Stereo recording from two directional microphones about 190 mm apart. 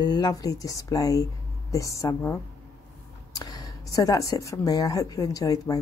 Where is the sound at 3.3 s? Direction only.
20° left (ahead or behind).